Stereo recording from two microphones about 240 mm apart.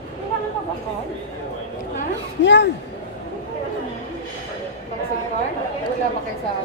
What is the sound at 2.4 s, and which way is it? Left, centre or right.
Speech, left.